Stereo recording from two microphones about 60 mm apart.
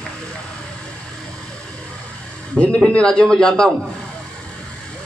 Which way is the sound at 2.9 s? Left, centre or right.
Centre.